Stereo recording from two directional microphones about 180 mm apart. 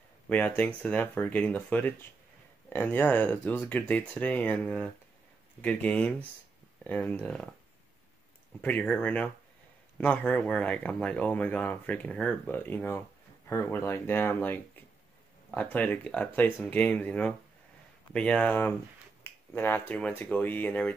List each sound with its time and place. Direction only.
0.3 s speech: 10° left (ahead or behind)
8.9 s speech: 10° left (ahead or behind)